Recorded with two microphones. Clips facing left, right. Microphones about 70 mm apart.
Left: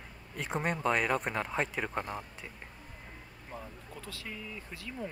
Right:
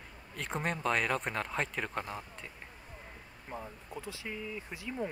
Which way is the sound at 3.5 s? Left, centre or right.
Centre.